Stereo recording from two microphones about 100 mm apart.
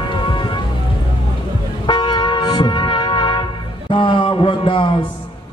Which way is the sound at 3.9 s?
60° left (ahead or behind).